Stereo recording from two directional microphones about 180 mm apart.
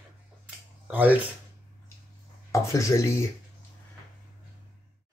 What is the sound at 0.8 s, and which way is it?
Speech, 10° right (ahead or behind).